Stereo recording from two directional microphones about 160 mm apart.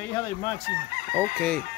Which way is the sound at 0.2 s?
20° left (ahead or behind).